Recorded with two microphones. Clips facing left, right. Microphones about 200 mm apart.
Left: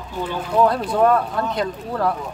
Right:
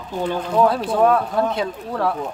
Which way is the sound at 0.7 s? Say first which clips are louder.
Even; centre (ahead or behind).